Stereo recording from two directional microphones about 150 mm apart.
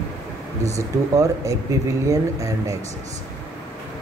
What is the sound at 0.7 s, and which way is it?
Speech, 20° right (ahead or behind).